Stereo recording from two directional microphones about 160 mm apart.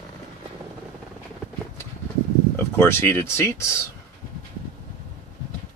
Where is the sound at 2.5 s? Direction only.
15° left (ahead or behind).